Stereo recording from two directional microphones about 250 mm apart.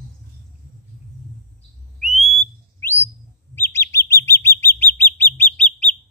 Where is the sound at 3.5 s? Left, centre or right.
Centre.